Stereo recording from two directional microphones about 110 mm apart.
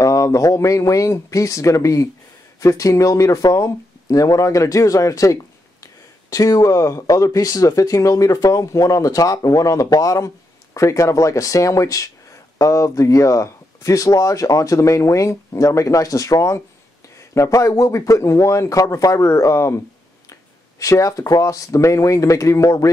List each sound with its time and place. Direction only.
0.0 s speech: 30° left (ahead or behind)
20.8 s speech: 30° left (ahead or behind)